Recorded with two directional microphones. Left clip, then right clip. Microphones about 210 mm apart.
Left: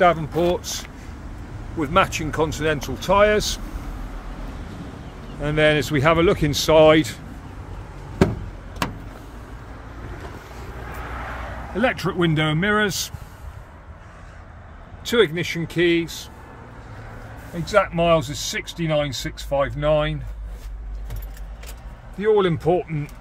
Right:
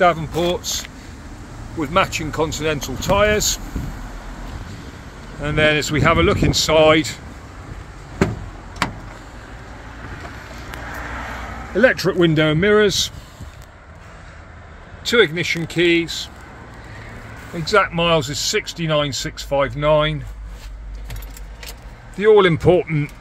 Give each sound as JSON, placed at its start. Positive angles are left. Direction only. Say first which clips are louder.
{"t": 0.0, "sound": "speech", "louder": "right 1 dB", "side_deg": 5}
{"t": 5.4, "sound": "speech", "louder": "right 2 dB", "side_deg": 15}
{"t": 11.7, "sound": "speech", "louder": "right 7 dB", "side_deg": 5}
{"t": 15.0, "sound": "speech", "louder": "right 4 dB", "side_deg": -5}
{"t": 17.6, "sound": "speech", "louder": "right 2 dB", "side_deg": -20}
{"t": 22.1, "sound": "speech", "louder": "right 6 dB", "side_deg": -25}